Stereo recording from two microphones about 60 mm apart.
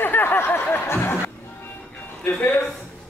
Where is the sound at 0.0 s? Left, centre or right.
Left.